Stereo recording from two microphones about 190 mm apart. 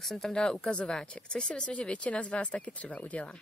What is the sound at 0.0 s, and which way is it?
Speech, centre (ahead or behind).